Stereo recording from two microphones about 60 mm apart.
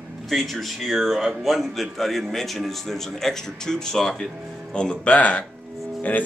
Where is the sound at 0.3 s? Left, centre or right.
Centre.